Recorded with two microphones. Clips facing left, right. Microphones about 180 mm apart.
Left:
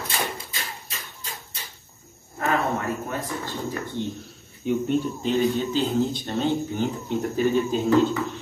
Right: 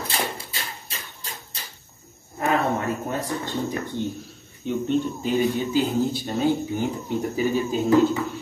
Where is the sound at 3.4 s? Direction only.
20° right (ahead or behind).